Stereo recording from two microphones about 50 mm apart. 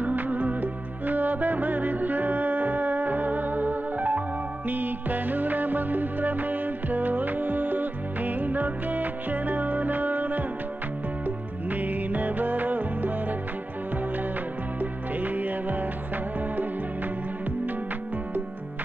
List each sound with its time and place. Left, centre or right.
0.0 s music: right
14.8 s music: right